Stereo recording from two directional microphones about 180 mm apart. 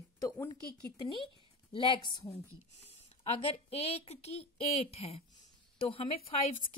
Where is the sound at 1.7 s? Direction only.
25° left (ahead or behind).